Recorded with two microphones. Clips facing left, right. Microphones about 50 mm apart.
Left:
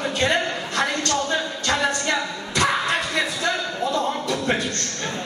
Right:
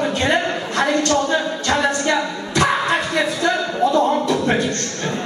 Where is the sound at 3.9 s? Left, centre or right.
Right.